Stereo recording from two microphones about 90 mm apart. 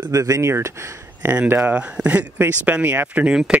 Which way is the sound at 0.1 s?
40° right (ahead or behind).